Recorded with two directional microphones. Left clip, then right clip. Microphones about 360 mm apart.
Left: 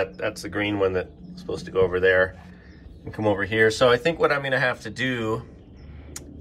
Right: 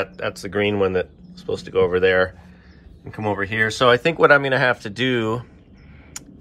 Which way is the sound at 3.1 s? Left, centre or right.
Centre.